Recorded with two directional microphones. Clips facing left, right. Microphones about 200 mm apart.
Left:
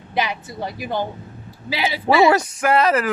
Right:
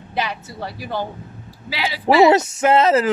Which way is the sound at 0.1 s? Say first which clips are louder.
Left 2 dB; 10° left (ahead or behind).